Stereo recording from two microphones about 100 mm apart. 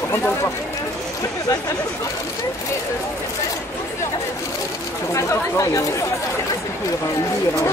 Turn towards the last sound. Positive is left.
turn(degrees=30)  # may be behind; listen again after turning